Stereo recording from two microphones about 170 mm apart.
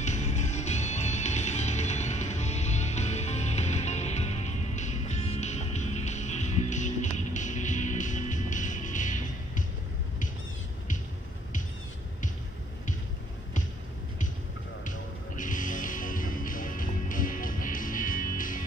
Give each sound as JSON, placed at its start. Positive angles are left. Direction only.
{"t": 0.0, "sound": "music", "side_deg": 45}
{"t": 14.9, "sound": "music", "side_deg": 50}